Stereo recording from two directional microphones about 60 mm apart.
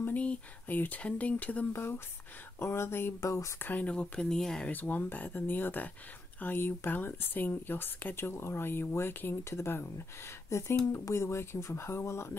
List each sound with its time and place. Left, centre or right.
0.0 s speech: left
1.7 s speech: left
3.2 s speech: left
3.5 s speech: left
3.8 s speech: centre
4.6 s speech: left
9.4 s speech: left